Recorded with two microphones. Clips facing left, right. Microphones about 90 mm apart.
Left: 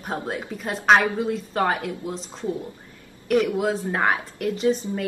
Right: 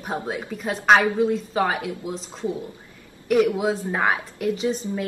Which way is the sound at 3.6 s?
5° right (ahead or behind).